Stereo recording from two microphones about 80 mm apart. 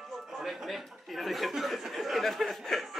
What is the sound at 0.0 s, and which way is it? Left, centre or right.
Speech, centre.